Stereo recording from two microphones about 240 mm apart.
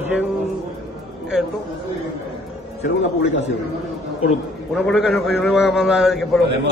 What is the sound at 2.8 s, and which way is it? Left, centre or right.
Speech, left.